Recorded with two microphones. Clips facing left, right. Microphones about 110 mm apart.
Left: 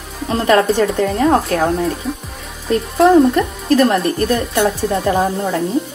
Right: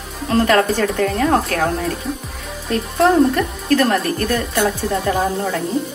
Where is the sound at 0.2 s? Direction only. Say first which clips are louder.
Right 3 dB; centre (ahead or behind).